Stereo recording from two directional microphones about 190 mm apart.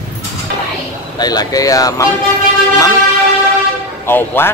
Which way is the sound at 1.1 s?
20° left (ahead or behind).